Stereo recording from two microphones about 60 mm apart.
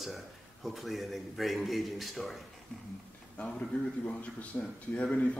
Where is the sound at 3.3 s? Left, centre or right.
Centre.